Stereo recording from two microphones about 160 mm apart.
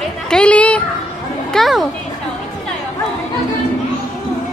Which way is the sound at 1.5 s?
Centre (ahead or behind).